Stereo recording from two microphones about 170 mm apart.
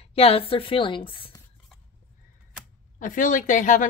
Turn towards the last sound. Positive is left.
turn(degrees=50)  # may be behind; listen again after turning